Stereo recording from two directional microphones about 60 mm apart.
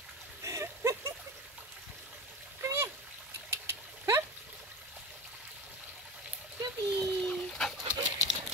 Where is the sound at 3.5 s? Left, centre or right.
Right.